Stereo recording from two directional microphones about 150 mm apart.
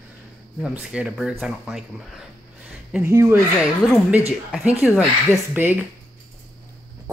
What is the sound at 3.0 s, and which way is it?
Speech, 15° right (ahead or behind).